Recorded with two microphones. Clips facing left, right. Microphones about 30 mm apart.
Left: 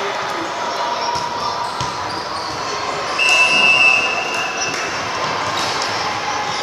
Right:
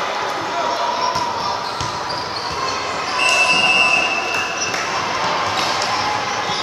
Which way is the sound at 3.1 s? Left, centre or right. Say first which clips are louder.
Left 2 dB; centre.